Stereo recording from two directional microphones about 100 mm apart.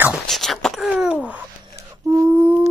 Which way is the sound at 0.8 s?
15° right (ahead or behind).